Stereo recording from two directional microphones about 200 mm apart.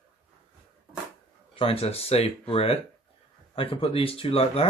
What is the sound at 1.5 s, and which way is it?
Speech, 30° left (ahead or behind).